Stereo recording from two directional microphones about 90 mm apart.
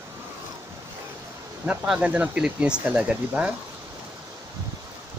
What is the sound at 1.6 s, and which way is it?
Speech, 20° right (ahead or behind).